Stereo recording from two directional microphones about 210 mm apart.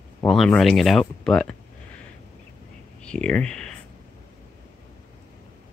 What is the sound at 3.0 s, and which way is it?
Speech, 5° left (ahead or behind).